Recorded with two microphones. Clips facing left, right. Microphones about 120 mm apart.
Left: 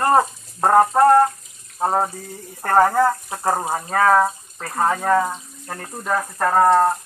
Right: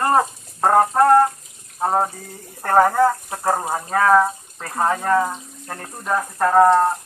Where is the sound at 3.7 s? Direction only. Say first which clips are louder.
Even; centre (ahead or behind).